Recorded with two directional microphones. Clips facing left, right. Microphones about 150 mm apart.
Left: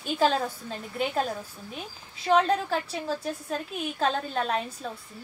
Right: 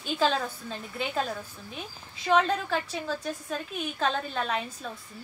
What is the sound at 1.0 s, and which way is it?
A woman's voice, 35° left (ahead or behind).